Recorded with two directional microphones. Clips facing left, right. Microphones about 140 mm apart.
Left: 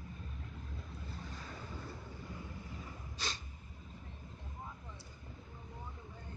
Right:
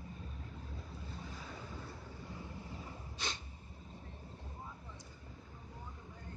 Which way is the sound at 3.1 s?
20° right (ahead or behind).